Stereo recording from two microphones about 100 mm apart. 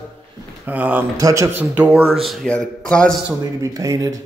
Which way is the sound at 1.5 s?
15° right (ahead or behind).